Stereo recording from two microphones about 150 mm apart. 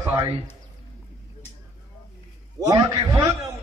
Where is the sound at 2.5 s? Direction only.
25° right (ahead or behind).